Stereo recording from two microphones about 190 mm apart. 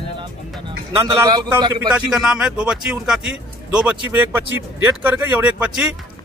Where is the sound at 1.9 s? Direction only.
5° right (ahead or behind).